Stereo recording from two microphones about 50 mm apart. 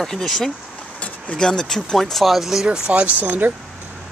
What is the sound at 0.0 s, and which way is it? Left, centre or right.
Speech, centre.